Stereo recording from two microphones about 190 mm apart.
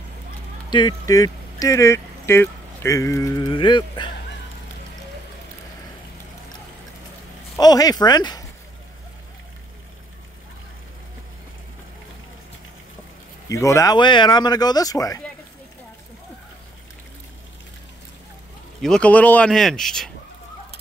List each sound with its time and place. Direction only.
0.7 s speech: 25° left (ahead or behind)
7.5 s speech: 20° left (ahead or behind)
13.5 s speech: 15° left (ahead or behind)
18.8 s speech: 5° left (ahead or behind)